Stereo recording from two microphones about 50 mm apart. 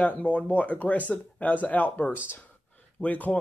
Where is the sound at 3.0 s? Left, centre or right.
Left.